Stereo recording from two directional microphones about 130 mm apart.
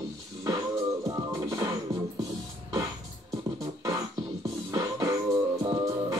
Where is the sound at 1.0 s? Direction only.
25° right (ahead or behind).